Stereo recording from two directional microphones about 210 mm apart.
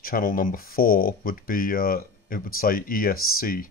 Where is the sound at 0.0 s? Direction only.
40° left (ahead or behind).